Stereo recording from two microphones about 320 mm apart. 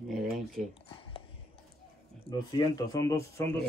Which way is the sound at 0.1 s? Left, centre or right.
Centre.